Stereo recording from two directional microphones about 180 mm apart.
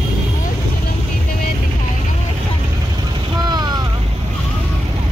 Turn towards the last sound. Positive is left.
turn(degrees=-25)  # may be behind; listen again after turning